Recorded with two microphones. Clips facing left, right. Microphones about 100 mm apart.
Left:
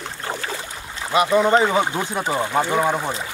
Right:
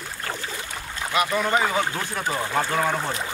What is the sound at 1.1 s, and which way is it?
Speech, 25° left (ahead or behind).